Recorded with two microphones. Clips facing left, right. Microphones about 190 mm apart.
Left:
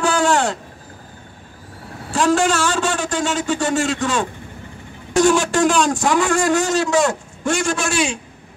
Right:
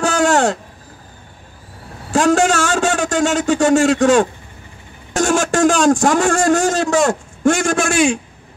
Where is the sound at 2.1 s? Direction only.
45° right (ahead or behind).